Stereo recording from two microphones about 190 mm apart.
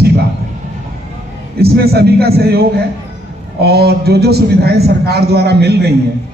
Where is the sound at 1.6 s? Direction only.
55° right (ahead or behind).